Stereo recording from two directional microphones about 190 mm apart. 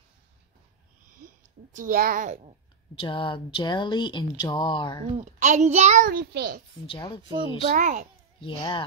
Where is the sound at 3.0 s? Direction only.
25° left (ahead or behind).